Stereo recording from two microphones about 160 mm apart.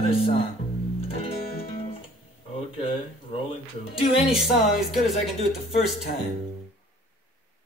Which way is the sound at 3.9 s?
35° left (ahead or behind).